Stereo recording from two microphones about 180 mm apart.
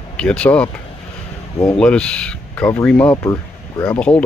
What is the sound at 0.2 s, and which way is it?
Speech, 5° left (ahead or behind).